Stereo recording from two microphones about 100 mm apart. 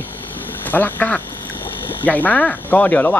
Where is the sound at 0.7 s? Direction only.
20° left (ahead or behind).